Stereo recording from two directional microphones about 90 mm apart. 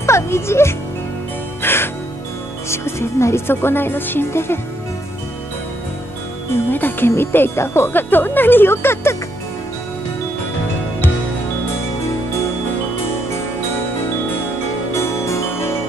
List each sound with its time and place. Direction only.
0.0 s music: 30° left (ahead or behind)
2.7 s speech: 30° left (ahead or behind)
6.5 s speech: 25° left (ahead or behind)
14.9 s music: 30° left (ahead or behind)